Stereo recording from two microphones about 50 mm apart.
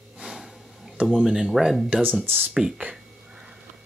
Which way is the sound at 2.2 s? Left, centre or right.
Right.